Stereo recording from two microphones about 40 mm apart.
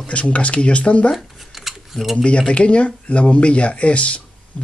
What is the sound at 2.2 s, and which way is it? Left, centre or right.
Speech, left.